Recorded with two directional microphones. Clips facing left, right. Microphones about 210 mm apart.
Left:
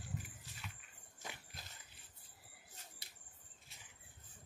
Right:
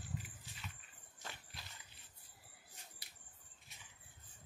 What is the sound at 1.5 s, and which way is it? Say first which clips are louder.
Dog: even; 45° left (ahead or behind).